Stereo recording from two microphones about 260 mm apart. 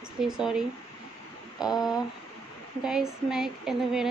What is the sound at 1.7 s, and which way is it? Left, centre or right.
Female singing, centre.